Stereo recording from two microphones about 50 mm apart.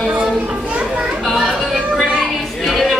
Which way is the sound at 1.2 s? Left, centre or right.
Centre.